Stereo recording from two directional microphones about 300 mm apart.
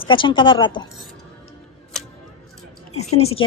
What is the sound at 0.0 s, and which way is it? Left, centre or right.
Speech, centre.